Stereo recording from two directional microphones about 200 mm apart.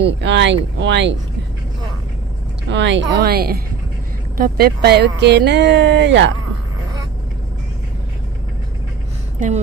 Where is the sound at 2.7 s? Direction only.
60° right (ahead or behind).